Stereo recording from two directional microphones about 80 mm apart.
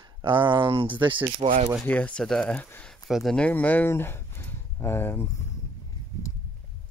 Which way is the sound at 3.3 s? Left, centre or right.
Centre.